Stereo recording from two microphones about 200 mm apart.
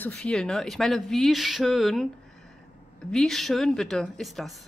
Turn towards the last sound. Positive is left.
turn(degrees=0)  # may be behind; listen again after turning